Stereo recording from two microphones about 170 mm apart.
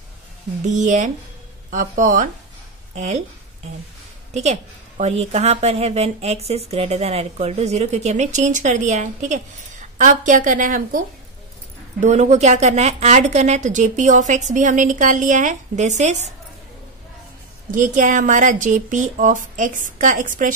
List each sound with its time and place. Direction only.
0.7 s a woman's voice: 45° right (ahead or behind)
4.3 s a woman's voice: 40° right (ahead or behind)
17.6 s a woman's voice: 50° right (ahead or behind)